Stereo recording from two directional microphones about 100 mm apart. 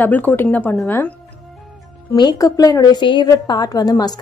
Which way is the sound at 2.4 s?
40° left (ahead or behind).